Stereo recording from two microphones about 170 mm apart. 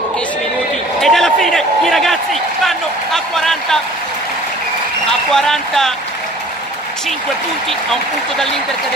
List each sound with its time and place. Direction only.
1.0 s a man's voice: centre (ahead or behind)
5.3 s speech: centre (ahead or behind)